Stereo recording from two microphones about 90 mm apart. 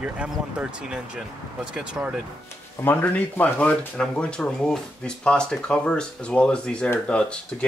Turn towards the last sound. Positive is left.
turn(degrees=10)  # may be behind; listen again after turning